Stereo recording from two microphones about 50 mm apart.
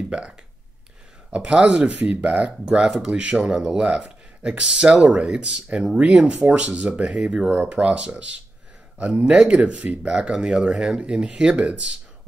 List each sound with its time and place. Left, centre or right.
0.1 s speech: right
7.5 s speech: right
10.0 s speech: centre